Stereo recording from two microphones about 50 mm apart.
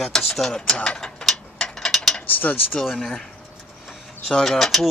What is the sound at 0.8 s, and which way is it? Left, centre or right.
Mechanisms, centre.